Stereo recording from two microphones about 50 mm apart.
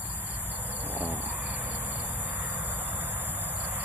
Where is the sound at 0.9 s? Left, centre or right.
Right.